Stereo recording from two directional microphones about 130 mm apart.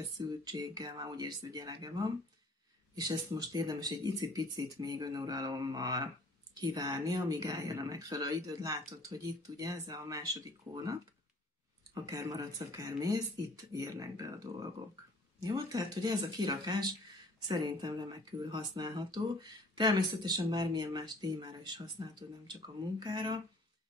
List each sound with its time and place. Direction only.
0.3 s speech: 30° right (ahead or behind)